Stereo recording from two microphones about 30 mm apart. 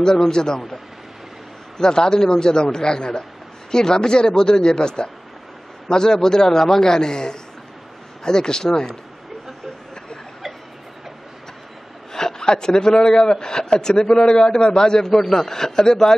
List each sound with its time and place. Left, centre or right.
0.0 s a man's voice: left
1.8 s a man's voice: left
12.1 s a man's voice: centre